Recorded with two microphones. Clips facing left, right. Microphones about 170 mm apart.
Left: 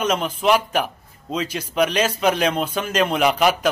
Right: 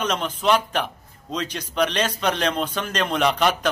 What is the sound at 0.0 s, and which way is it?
A man's voice, 10° left (ahead or behind).